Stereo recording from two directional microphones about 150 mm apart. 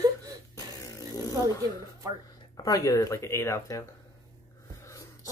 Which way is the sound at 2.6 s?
25° left (ahead or behind).